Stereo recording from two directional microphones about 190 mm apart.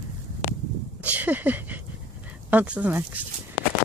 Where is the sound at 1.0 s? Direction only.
10° right (ahead or behind).